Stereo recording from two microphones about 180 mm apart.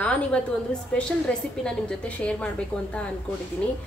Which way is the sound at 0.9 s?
5° left (ahead or behind).